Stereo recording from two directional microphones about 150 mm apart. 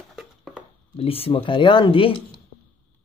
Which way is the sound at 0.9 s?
40° left (ahead or behind).